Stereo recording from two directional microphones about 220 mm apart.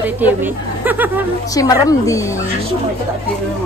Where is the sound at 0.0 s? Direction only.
10° right (ahead or behind).